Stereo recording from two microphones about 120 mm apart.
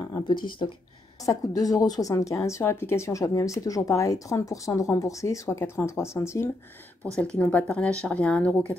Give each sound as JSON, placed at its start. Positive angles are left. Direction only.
{"t": 0.0, "sound": "a sound", "side_deg": 30}
{"t": 0.6, "sound": "a woman's voice", "side_deg": 40}
{"t": 1.2, "sound": "a woman's voice", "side_deg": 30}
{"t": 7.3, "sound": "speech", "side_deg": 10}